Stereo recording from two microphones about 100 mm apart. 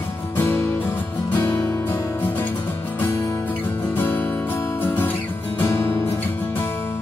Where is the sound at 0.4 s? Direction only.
25° left (ahead or behind).